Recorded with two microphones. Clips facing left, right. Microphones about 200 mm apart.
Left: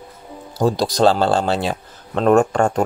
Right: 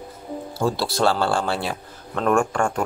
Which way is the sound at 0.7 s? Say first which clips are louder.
Left 7 dB; 15° left (ahead or behind).